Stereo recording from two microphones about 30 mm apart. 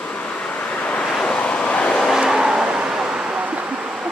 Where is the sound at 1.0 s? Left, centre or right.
Left.